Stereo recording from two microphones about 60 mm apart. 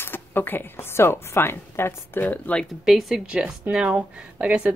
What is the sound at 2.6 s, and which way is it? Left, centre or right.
Speech, centre.